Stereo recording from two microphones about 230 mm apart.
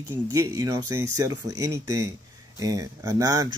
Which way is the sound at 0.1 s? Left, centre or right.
Centre.